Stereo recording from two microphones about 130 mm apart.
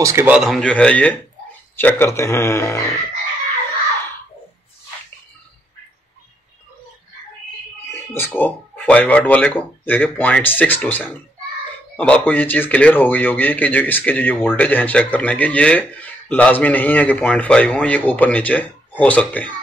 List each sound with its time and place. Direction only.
0.0 s speech: 20° right (ahead or behind)
0.3 s a man's voice: centre (ahead or behind); by 3.0 s 20° left (ahead or behind)
7.9 s a man's voice: 15° left (ahead or behind)